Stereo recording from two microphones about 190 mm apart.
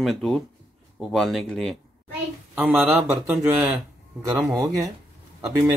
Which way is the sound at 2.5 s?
10° right (ahead or behind).